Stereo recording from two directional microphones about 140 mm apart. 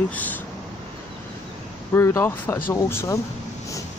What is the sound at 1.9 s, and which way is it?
Speech, 15° left (ahead or behind).